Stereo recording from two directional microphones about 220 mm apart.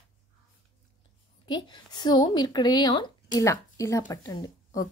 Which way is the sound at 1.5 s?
20° left (ahead or behind).